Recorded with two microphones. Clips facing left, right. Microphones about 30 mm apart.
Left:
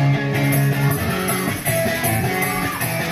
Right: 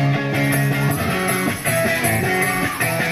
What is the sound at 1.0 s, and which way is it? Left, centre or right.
Music, right.